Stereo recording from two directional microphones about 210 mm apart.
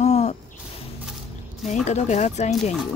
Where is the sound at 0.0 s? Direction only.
30° left (ahead or behind).